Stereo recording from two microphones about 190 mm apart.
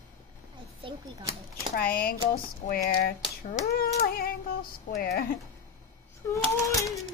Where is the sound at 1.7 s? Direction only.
50° left (ahead or behind).